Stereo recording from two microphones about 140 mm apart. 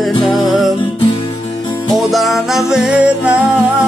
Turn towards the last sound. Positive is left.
turn(degrees=-10)  # may be behind; listen again after turning